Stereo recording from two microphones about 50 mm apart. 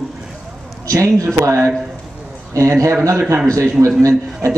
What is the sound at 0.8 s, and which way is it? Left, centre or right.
Speech, right.